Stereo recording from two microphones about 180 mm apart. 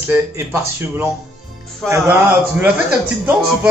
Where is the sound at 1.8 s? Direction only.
Centre (ahead or behind).